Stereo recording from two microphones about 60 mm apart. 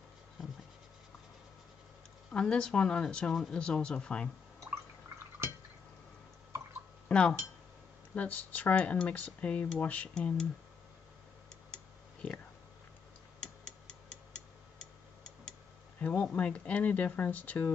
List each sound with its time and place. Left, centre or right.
2.3 s speech: centre
7.1 s speech: centre
10.1 s speech: centre
11.7 s tick-tock: centre
13.4 s tick-tock: centre
16.0 s speech: left